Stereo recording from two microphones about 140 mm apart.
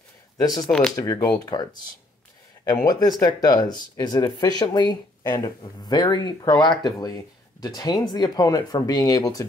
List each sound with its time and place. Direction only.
0.6 s speech: 5° left (ahead or behind)
0.9 s speech: 25° left (ahead or behind)